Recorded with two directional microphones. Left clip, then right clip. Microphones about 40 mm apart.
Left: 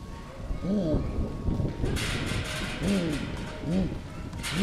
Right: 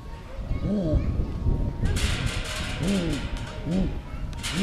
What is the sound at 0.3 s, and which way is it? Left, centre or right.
Music, centre.